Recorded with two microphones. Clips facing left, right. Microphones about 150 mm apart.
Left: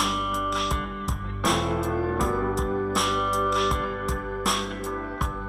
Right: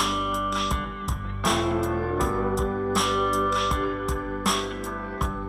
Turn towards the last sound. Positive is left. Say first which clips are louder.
# even
turn(degrees=0)  # may be behind; listen again after turning